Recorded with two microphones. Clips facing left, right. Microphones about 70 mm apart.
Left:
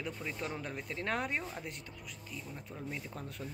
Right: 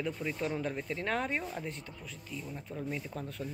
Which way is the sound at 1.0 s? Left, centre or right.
Centre.